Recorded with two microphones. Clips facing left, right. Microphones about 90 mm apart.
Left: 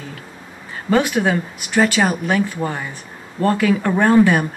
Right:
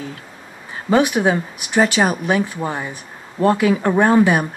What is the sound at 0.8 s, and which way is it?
Speech, 15° right (ahead or behind).